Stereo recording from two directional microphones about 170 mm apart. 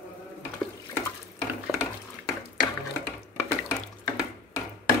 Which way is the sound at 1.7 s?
20° left (ahead or behind).